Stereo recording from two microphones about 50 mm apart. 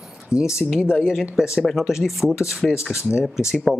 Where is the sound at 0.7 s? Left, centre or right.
Centre.